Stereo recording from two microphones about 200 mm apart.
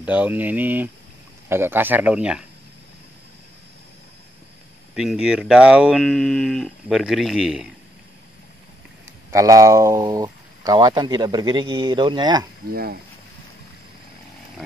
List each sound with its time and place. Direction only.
0.0 s speech: 10° right (ahead or behind)
4.9 s speech: 5° right (ahead or behind)
9.3 s speech: 15° right (ahead or behind)